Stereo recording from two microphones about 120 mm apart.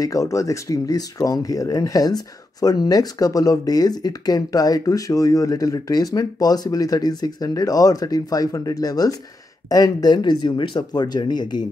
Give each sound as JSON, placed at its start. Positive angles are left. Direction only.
{"t": 0.0, "sound": "speech", "side_deg": 30}